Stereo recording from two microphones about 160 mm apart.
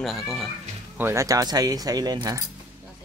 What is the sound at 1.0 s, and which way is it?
Speech, 15° right (ahead or behind).